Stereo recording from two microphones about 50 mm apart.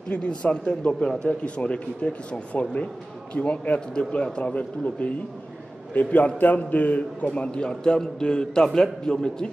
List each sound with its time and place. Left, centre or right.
0.1 s a man's voice: left